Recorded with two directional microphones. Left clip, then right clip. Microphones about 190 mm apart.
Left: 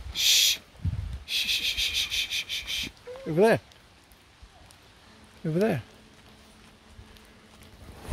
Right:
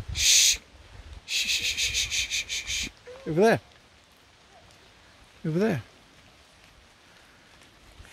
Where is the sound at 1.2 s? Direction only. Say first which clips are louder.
Even; 15° right (ahead or behind).